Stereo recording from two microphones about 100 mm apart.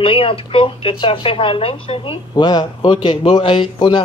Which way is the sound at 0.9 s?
55° left (ahead or behind).